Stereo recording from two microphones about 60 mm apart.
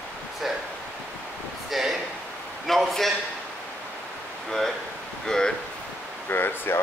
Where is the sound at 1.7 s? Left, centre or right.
Centre.